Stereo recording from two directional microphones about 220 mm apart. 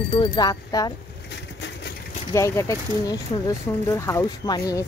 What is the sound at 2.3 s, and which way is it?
Speech, 15° left (ahead or behind).